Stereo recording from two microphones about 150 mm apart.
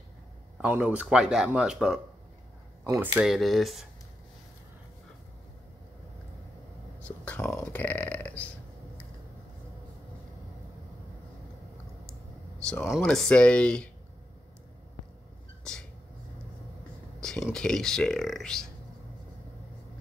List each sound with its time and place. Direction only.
0.6 s speech: 10° right (ahead or behind)
2.8 s speech: 20° right (ahead or behind)
3.2 s speech: centre (ahead or behind)
7.1 s speech: 10° left (ahead or behind)
13.0 s speech: 5° left (ahead or behind)
17.2 s speech: 5° left (ahead or behind)